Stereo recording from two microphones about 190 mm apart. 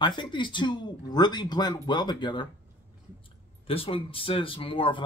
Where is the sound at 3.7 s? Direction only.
30° left (ahead or behind).